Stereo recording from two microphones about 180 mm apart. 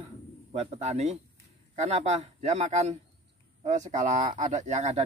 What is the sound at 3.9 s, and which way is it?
Speech, 40° right (ahead or behind).